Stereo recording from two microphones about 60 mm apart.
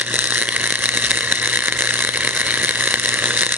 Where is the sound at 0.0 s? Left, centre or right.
Right.